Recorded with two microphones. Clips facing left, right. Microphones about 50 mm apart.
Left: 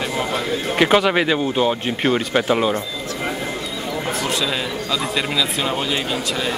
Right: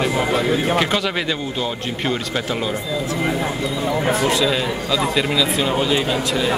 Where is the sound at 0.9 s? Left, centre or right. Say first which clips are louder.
Left 5 dB; left.